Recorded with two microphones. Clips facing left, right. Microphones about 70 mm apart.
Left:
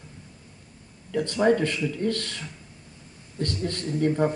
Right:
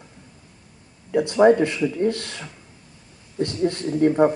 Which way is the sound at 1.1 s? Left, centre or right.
Right.